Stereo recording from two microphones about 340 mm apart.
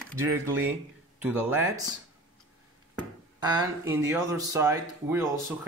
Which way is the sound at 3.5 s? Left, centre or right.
Centre.